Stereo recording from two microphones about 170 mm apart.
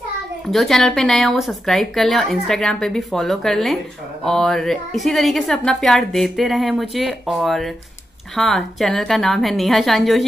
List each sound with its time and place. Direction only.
0.5 s a woman's voice: centre (ahead or behind)